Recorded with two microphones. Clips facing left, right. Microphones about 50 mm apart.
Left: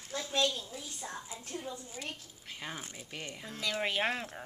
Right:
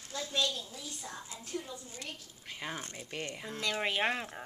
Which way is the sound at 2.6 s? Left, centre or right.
Centre.